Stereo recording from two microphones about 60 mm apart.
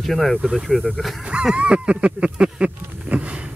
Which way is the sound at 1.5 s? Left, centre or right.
Centre.